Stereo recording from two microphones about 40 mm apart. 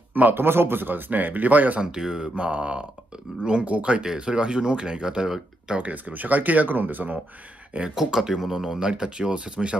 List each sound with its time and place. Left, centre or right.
0.3 s speech: right
1.8 s speech: centre
2.3 s mantra: right
3.4 s speech: right
4.0 s speech: centre
5.8 s speech: right
7.9 s speech: centre; by 9.8 s right